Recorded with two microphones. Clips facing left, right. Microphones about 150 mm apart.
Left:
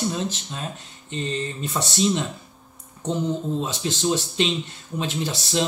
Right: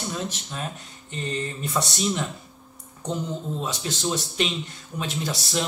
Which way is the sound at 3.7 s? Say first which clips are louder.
Left 2 dB; 25° left (ahead or behind).